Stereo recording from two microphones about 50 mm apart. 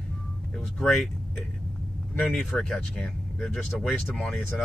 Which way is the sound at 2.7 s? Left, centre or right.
Centre.